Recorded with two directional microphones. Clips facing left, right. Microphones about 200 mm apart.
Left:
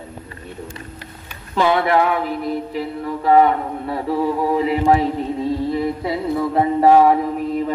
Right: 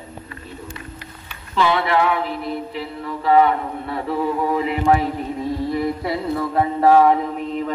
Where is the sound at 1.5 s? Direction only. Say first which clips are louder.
Left 2 dB; 45° left (ahead or behind); by 5.0 s 30° left (ahead or behind).